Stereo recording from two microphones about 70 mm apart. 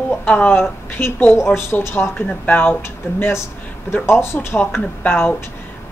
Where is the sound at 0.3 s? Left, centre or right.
Left.